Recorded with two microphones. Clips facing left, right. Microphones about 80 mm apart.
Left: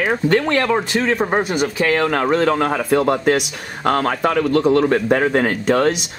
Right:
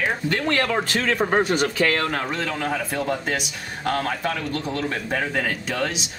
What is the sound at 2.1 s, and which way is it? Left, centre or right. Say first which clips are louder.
Speech: left 10 dB; left.